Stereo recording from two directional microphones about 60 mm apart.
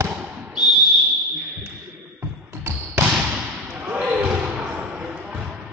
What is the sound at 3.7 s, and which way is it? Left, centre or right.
Basketball bounce, right.